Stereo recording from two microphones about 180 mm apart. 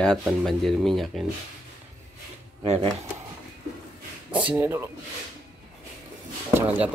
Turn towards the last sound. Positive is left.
turn(degrees=-15)  # may be behind; listen again after turning